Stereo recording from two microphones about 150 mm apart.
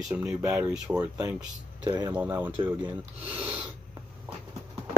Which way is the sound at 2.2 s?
10° right (ahead or behind).